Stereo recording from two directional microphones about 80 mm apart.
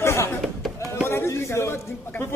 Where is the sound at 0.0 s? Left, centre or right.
Left.